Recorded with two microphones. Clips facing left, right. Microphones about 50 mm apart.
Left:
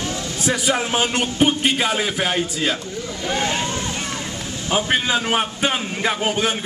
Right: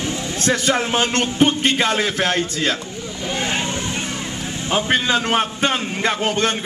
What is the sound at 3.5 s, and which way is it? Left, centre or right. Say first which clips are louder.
Vehicle: right 1 dB; right.